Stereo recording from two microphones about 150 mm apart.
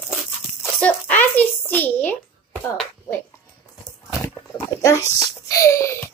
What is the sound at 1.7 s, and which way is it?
Speech, 10° left (ahead or behind).